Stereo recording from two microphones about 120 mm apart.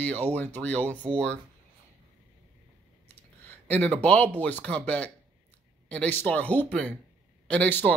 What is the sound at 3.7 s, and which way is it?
Speech, 10° left (ahead or behind).